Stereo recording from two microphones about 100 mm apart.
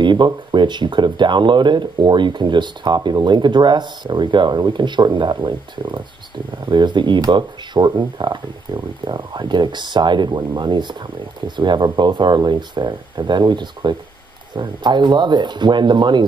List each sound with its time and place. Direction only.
0.0 s speech: 50° right (ahead or behind)